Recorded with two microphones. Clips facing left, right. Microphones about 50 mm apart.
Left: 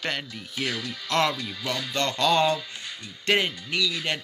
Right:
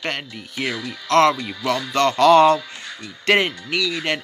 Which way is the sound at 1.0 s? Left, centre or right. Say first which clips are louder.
Right 9 dB; right.